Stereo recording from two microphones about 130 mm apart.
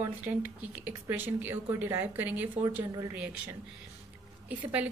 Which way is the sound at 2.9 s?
25° right (ahead or behind).